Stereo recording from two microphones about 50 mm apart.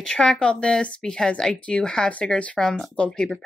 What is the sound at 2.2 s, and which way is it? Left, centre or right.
Speech, left.